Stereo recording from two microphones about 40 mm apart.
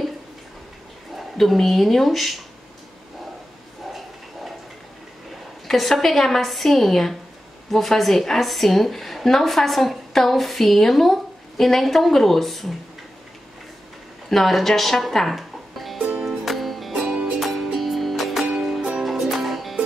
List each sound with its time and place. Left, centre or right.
1.4 s a woman's voice: centre
5.7 s a woman's voice: centre
14.3 s speech: centre
16.3 s music: centre
18.4 s music: right
18.7 s music: centre